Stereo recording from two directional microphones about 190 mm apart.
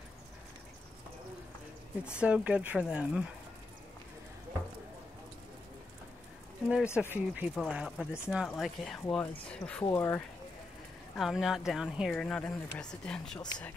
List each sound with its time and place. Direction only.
2.0 s speech: 5° right (ahead or behind)
7.0 s speech: 10° right (ahead or behind); by 10.2 s 15° left (ahead or behind)
11.1 s speech: centre (ahead or behind)
13.4 s speech: 20° left (ahead or behind)